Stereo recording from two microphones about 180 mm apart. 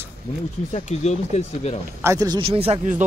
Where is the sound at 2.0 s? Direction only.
20° right (ahead or behind); by 3.0 s 40° right (ahead or behind).